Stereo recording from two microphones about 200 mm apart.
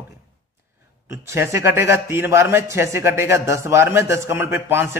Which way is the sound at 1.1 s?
15° right (ahead or behind).